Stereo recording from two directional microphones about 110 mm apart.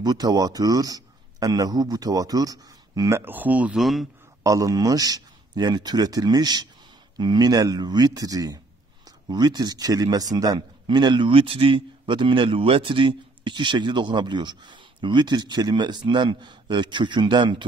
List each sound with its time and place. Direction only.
0.0 s a man's voice: 40° right (ahead or behind); by 3.7 s 15° right (ahead or behind)
3.7 s speech: centre (ahead or behind)
4.4 s a man's voice: 30° right (ahead or behind); by 17.6 s 45° right (ahead or behind)